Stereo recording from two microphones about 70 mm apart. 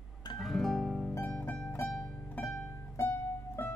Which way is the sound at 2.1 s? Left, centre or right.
Left.